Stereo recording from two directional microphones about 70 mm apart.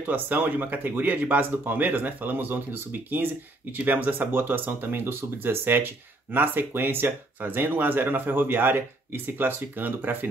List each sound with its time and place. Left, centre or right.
0.0 s speech: right